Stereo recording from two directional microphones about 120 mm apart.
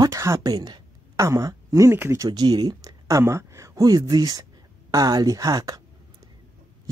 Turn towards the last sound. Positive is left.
turn(degrees=-30)  # may be behind; listen again after turning